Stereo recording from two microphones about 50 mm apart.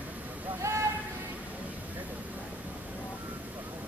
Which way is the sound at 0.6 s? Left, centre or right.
Right.